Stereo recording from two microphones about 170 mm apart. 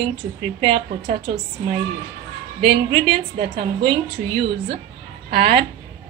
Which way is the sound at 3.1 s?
65° right (ahead or behind).